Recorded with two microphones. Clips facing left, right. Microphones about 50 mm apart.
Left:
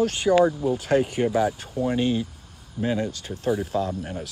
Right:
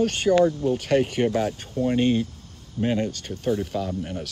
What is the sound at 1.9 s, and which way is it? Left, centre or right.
Speech, right.